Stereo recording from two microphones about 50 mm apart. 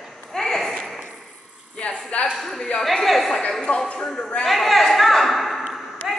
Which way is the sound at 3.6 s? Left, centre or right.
Centre.